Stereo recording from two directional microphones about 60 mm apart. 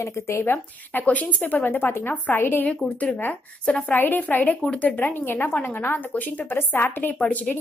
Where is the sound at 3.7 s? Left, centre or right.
Left.